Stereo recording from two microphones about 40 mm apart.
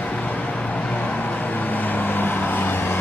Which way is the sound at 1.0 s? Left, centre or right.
Left.